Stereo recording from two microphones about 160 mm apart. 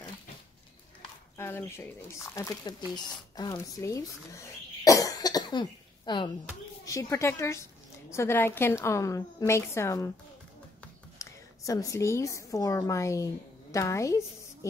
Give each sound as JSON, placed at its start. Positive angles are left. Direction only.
{"t": 1.3, "sound": "a sound", "side_deg": 15}
{"t": 2.3, "sound": "a woman's voice", "side_deg": 20}
{"t": 11.1, "sound": "a woman's voice", "side_deg": 20}